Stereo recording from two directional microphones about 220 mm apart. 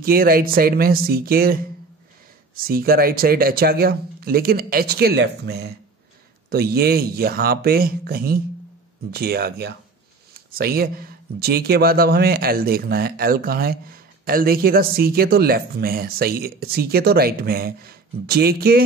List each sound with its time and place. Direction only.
0.0 s speech: 40° right (ahead or behind)